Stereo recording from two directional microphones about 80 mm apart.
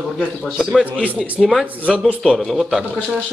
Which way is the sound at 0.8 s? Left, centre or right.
Centre.